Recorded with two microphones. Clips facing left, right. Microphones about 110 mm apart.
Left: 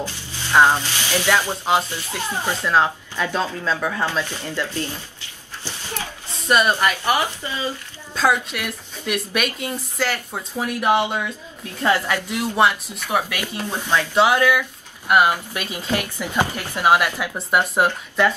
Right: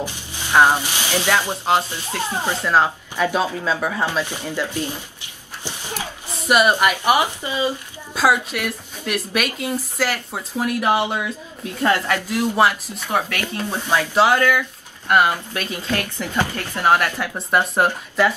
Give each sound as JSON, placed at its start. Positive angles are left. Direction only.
{"t": 0.0, "sound": "speech", "side_deg": -15}
{"t": 11.8, "sound": "speech", "side_deg": 10}
{"t": 12.3, "sound": "speech", "side_deg": 0}
{"t": 13.7, "sound": "speech", "side_deg": -5}
{"t": 14.2, "sound": "speech", "side_deg": 10}